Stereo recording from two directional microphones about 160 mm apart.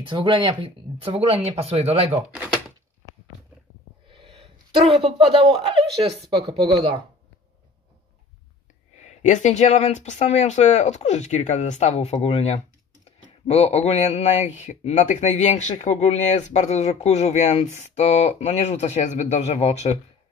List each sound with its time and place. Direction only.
0.2 s speech: 30° right (ahead or behind)
2.3 s a sound: 10° right (ahead or behind)
4.7 s speech: 35° right (ahead or behind)
8.9 s a man's voice: 45° left (ahead or behind)